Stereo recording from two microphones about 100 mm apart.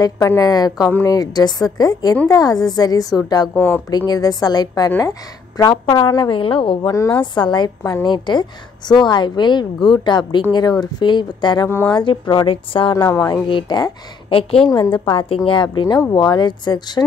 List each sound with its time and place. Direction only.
0.4 s a woman's voice: 40° left (ahead or behind)
3.5 s speech: 15° left (ahead or behind)
4.1 s a woman's voice: 40° left (ahead or behind); by 6.9 s 55° left (ahead or behind)
6.9 s a woman's voice: 30° left (ahead or behind)
7.3 s a woman's voice: 50° left (ahead or behind)
13.1 s a woman's voice: 40° left (ahead or behind)
13.5 s a woman's voice: 50° left (ahead or behind)
14.9 s a woman's voice: 60° left (ahead or behind)